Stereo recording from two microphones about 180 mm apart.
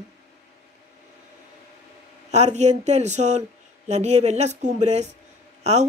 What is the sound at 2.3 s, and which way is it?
Speech, 40° right (ahead or behind).